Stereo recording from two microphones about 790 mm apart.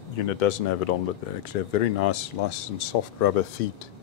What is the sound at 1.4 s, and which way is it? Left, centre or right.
Speech, left.